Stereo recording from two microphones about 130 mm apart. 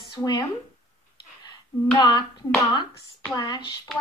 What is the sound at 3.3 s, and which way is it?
Speech, 25° left (ahead or behind).